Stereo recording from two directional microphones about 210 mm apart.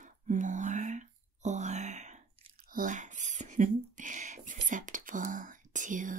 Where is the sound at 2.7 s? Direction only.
40° right (ahead or behind).